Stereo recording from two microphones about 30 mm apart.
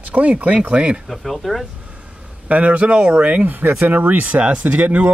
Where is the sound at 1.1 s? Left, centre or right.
Centre.